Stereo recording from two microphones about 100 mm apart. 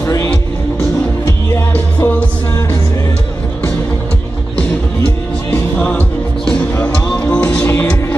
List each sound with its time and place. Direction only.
1.7 s music: 20° left (ahead or behind)
5.5 s music: 15° left (ahead or behind)